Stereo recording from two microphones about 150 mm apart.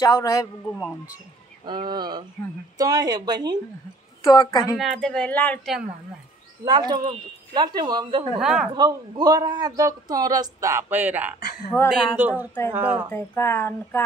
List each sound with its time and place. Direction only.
0.0 s speech: 25° left (ahead or behind)
1.6 s speech: 30° right (ahead or behind)
4.2 s speech: 25° left (ahead or behind)
4.7 s speech: centre (ahead or behind)
6.6 s speech: 25° right (ahead or behind)
8.4 s speech: 5° right (ahead or behind)
8.7 s a woman's voice: 25° right (ahead or behind)
13.1 s speech: 15° left (ahead or behind)